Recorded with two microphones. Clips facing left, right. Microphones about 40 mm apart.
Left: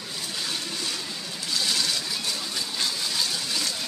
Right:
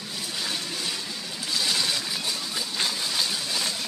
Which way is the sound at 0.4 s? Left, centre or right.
Centre.